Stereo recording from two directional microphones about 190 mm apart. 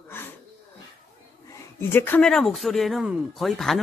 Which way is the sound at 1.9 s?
10° left (ahead or behind).